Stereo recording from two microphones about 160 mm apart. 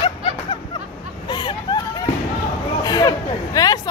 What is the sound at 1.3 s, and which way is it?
Hubbub, 25° left (ahead or behind).